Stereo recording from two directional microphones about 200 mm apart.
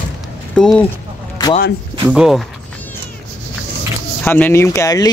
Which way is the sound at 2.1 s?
5° right (ahead or behind).